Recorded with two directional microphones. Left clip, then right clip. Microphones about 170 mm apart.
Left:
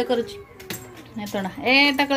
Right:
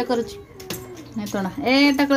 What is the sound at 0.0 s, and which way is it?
A woman's voice, 5° right (ahead or behind).